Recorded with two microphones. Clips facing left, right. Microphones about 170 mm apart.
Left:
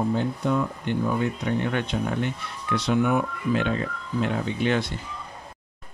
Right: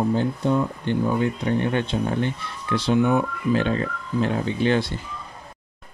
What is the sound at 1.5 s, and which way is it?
Speech, 30° right (ahead or behind).